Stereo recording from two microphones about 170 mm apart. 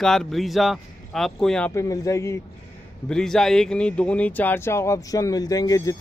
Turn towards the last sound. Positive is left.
turn(degrees=20)  # may be behind; listen again after turning